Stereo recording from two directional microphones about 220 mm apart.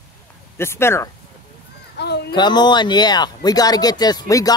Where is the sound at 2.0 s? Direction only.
50° left (ahead or behind).